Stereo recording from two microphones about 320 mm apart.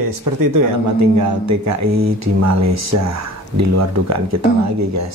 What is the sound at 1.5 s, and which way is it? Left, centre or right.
Speech, right.